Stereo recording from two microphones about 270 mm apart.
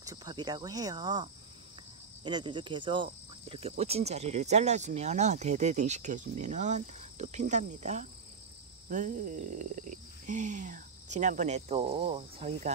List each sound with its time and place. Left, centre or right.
0.0 s speech: centre